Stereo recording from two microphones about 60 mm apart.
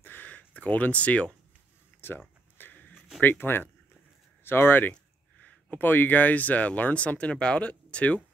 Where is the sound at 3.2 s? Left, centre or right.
Left.